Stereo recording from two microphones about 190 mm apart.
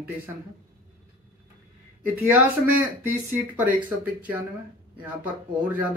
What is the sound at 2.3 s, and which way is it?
Speech, 10° right (ahead or behind).